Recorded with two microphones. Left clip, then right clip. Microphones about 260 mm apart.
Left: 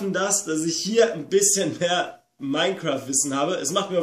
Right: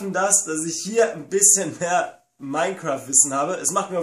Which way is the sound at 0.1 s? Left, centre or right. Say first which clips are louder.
Right 4 dB; centre.